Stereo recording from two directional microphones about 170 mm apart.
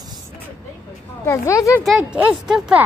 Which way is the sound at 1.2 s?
15° left (ahead or behind).